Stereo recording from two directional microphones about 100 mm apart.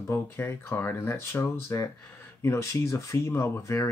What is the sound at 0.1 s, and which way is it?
Speech, 25° left (ahead or behind).